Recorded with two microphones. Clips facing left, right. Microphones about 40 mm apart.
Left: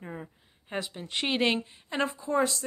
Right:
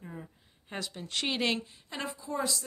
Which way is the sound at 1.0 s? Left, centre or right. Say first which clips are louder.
Left 3 dB; left.